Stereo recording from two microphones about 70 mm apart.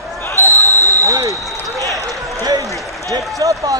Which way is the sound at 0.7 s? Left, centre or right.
Right.